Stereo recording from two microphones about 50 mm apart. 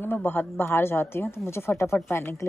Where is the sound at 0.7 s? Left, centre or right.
Left.